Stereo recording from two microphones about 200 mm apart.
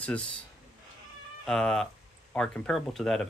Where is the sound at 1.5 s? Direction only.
5° left (ahead or behind).